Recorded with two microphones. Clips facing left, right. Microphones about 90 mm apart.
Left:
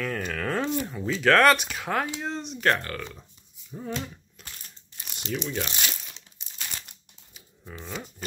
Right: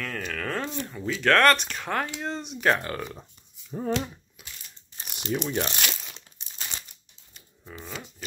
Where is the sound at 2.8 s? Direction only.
15° right (ahead or behind).